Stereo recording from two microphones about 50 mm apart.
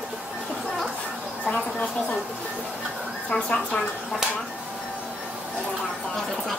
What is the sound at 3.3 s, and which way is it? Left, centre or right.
Speech, centre.